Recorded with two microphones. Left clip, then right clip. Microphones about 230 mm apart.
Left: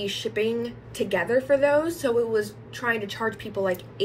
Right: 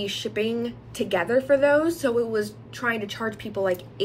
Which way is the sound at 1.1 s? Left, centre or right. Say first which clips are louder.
Right 1 dB; centre.